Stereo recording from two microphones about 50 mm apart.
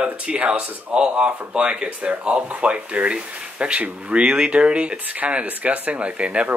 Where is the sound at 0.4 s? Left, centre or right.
Right.